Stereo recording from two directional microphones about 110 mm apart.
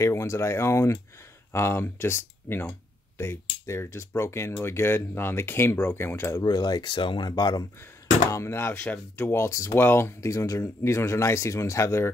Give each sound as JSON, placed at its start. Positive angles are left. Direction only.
{"t": 0.0, "sound": "speech", "side_deg": 25}
{"t": 6.4, "sound": "speech", "side_deg": 40}
{"t": 8.3, "sound": "speech", "side_deg": 25}